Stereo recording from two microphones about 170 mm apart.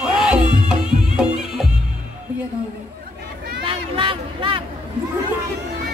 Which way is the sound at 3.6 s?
30° right (ahead or behind).